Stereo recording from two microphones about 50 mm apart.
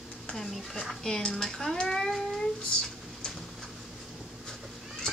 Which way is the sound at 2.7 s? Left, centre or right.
Centre.